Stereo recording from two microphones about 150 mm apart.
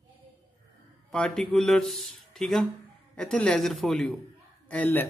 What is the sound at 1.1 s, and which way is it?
A man's voice, 5° left (ahead or behind).